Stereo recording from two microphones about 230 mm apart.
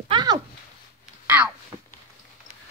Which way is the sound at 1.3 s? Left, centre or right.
Centre.